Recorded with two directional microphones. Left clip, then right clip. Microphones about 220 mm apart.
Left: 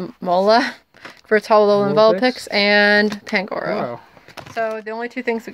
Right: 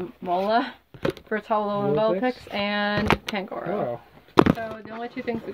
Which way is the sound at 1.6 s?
60° left (ahead or behind).